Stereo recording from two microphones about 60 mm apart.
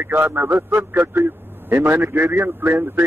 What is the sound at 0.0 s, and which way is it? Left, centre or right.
Speech, right.